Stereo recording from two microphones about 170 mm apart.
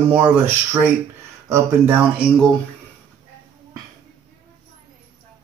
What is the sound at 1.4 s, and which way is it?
Speech, 10° right (ahead or behind).